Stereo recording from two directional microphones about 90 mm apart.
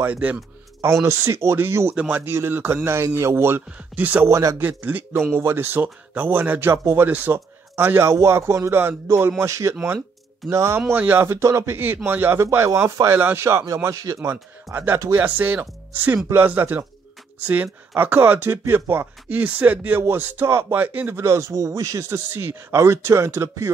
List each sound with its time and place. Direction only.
0.0 s speech: 20° right (ahead or behind)
1.0 s speech: 30° right (ahead or behind)
3.7 s speech: 20° right (ahead or behind)
4.3 s speech: 35° right (ahead or behind)
4.6 s a man's voice: 20° right (ahead or behind)
21.2 s speech: 30° right (ahead or behind)